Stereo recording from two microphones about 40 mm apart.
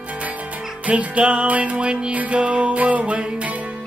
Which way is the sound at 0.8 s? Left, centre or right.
Right.